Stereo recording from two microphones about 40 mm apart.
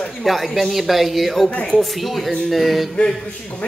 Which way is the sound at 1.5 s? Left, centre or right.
Left.